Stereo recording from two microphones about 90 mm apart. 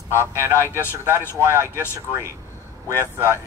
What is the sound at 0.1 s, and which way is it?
Speech, 30° left (ahead or behind).